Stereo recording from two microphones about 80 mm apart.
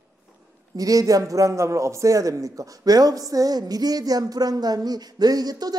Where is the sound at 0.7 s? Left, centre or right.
Right.